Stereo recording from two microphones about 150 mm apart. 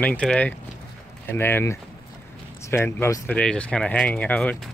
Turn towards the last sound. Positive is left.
turn(degrees=10)  # may be behind; listen again after turning